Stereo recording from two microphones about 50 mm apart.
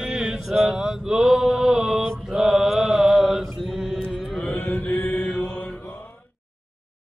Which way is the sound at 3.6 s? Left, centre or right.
Centre.